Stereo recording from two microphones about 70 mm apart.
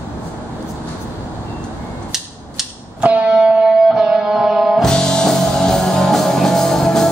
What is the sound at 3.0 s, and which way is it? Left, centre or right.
Music, centre.